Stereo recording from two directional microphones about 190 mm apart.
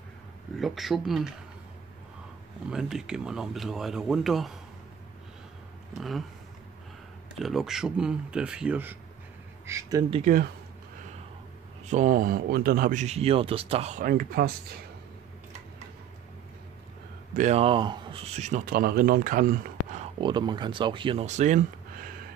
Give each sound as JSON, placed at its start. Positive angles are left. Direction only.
{"t": 0.6, "sound": "speech", "side_deg": 0}
{"t": 2.7, "sound": "speech", "side_deg": -5}
{"t": 5.9, "sound": "speech", "side_deg": 0}
{"t": 7.3, "sound": "speech", "side_deg": 0}
{"t": 10.2, "sound": "speech", "side_deg": -50}
{"t": 11.9, "sound": "speech", "side_deg": -40}
{"t": 17.4, "sound": "speech", "side_deg": -35}
{"t": 20.2, "sound": "speech", "side_deg": -25}